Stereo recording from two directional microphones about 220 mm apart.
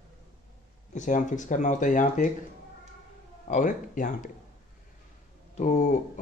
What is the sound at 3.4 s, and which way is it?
Speech, 35° left (ahead or behind).